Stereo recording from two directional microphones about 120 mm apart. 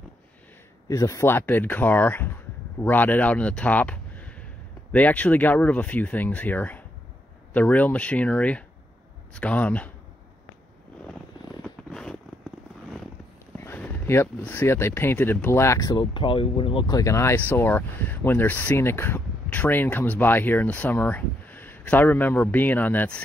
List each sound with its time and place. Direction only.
0.8 s speech: 25° left (ahead or behind); by 9.8 s 10° left (ahead or behind)
11.6 s a sound: 5° left (ahead or behind)
13.6 s a sound: 15° left (ahead or behind)
14.4 s speech: 15° left (ahead or behind); by 16.1 s 30° left (ahead or behind)
16.1 s speech: 45° left (ahead or behind)
16.8 s speech: 30° left (ahead or behind); by 23.2 s 10° left (ahead or behind)